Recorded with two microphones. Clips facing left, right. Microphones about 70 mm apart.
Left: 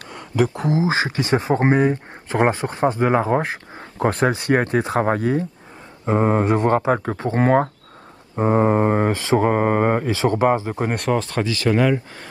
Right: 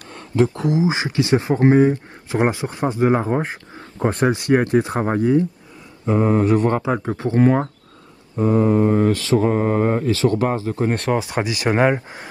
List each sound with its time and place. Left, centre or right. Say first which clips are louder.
0.1 s a man's voice: right 2 dB; centre; by 1.4 s left
1.8 s speech: right 3 dB; left
11.1 s speech: even; centre